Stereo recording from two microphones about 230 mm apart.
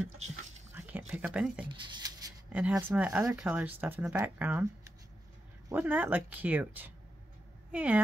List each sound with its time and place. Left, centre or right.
0.7 s whispering: centre
1.7 s speech: centre
2.5 s a woman's voice: centre